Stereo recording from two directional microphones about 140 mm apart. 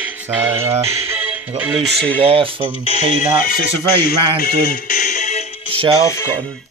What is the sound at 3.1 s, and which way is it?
Speech, 70° left (ahead or behind).